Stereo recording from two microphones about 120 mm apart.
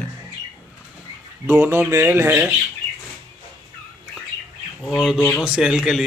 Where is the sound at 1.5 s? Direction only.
20° right (ahead or behind).